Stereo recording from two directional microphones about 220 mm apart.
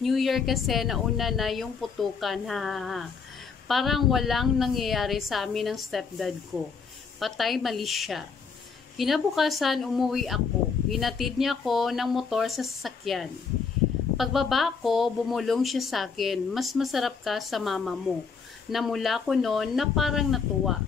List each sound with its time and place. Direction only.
0.0 s speech: centre (ahead or behind)